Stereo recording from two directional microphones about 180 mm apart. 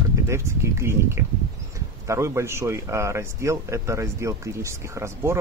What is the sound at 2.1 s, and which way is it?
Speech, 15° right (ahead or behind).